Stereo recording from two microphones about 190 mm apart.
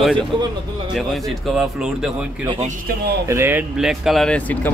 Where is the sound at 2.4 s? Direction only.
30° right (ahead or behind).